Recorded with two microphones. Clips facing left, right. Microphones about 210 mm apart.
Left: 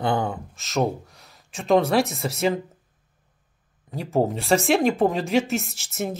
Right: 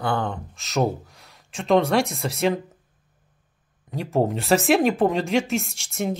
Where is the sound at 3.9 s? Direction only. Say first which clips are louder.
Even; centre (ahead or behind).